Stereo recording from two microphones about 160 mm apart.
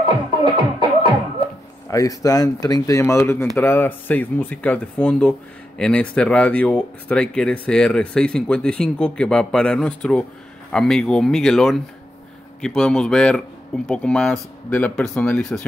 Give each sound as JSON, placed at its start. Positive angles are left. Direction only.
{"t": 0.6, "sound": "music", "side_deg": -30}
{"t": 1.9, "sound": "speech", "side_deg": 20}